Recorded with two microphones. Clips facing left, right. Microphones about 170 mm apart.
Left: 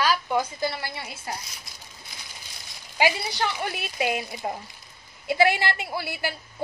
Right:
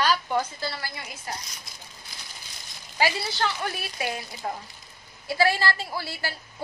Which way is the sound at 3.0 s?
15° left (ahead or behind).